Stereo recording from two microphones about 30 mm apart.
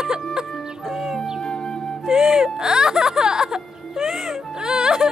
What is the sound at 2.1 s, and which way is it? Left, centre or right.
Speech, centre.